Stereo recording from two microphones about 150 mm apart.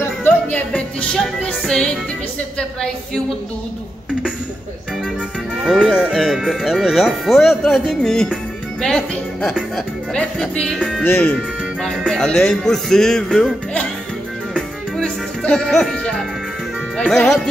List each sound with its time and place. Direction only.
0.0 s music: 15° left (ahead or behind)
5.9 s speech: 5° right (ahead or behind)
14.5 s music: 5° left (ahead or behind)
17.0 s speech: 5° left (ahead or behind)